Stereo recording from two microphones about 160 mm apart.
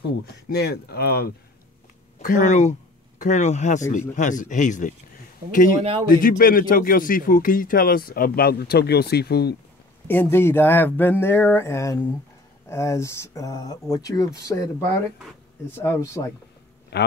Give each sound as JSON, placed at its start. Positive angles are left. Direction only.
{"t": 0.5, "sound": "speech", "side_deg": 80}
{"t": 2.2, "sound": "speech", "side_deg": 50}
{"t": 10.0, "sound": "speech", "side_deg": 15}
{"t": 15.7, "sound": "speech", "side_deg": 15}
{"t": 16.9, "sound": "a man's voice", "side_deg": 90}